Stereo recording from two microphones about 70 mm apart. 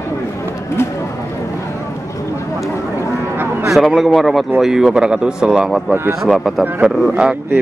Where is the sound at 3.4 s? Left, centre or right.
Right.